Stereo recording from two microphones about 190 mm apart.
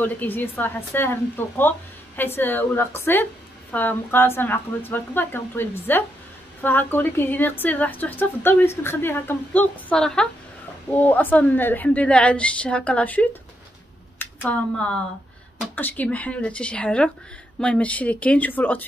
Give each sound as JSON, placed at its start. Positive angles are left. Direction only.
{"t": 0.0, "sound": "a woman's voice", "side_deg": 10}